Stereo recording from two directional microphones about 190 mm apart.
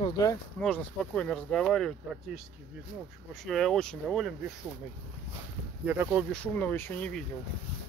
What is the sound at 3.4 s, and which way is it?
Speech, centre (ahead or behind).